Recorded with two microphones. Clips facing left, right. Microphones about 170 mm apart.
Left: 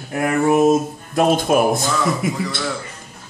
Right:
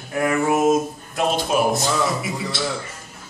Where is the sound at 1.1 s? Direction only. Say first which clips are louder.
Left 5 dB; 50° left (ahead or behind).